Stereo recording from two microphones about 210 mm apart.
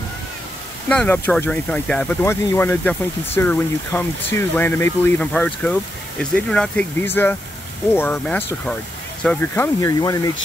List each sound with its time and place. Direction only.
0.8 s speech: 5° left (ahead or behind)
9.8 s speech: 15° left (ahead or behind)